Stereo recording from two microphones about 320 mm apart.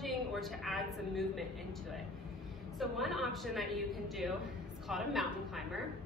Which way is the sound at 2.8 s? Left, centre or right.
Centre.